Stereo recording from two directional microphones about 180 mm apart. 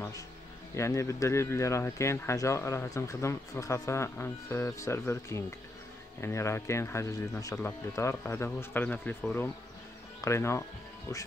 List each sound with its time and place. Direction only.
0.7 s speech: 15° left (ahead or behind)